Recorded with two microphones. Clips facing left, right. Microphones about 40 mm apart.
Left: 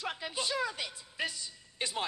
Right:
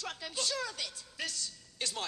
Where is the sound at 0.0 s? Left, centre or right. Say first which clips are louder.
Left 2 dB; left.